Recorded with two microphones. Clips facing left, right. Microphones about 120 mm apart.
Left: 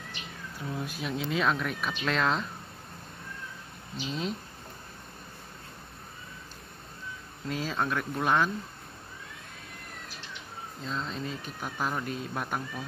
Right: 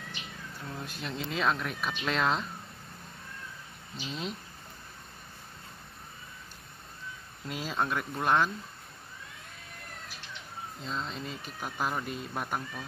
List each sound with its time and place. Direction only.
0.7 s speech: 5° left (ahead or behind)
3.9 s speech: centre (ahead or behind)
7.4 s speech: 5° right (ahead or behind)
10.8 s speech: centre (ahead or behind)